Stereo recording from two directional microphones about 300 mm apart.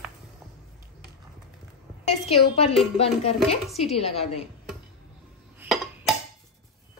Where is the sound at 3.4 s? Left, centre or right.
Centre.